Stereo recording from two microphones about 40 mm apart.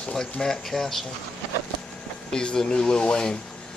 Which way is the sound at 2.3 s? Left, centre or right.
Centre.